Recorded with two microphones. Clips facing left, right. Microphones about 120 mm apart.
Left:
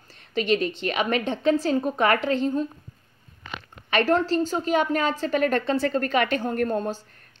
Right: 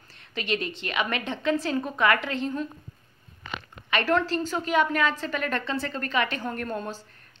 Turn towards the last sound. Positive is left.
turn(degrees=45)  # may be behind; listen again after turning